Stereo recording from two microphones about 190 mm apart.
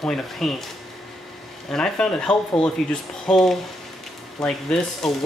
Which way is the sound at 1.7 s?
5° left (ahead or behind).